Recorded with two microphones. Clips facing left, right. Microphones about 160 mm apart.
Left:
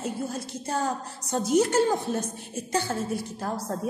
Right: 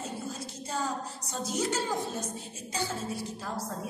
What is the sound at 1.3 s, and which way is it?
Speech, 55° left (ahead or behind).